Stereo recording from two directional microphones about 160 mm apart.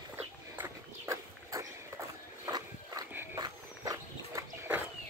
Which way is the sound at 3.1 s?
20° right (ahead or behind).